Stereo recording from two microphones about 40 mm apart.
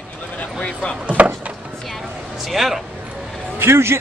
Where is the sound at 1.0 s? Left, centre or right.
Right.